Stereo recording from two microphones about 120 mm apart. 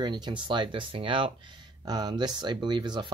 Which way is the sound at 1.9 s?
35° right (ahead or behind).